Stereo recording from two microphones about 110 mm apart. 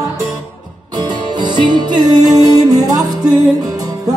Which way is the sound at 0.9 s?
45° right (ahead or behind).